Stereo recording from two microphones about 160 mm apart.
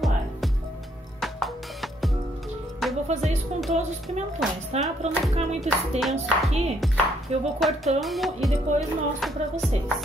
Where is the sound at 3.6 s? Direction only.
45° right (ahead or behind).